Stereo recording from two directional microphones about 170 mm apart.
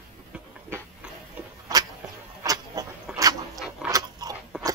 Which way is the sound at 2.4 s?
20° right (ahead or behind).